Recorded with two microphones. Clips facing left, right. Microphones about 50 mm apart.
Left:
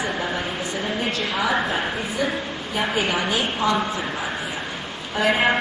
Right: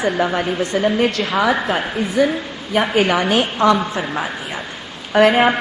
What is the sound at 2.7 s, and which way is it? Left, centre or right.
A woman's voice, right.